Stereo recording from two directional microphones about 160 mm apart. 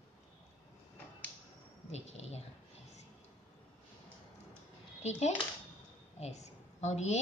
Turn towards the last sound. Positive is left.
turn(degrees=45)  # may be behind; listen again after turning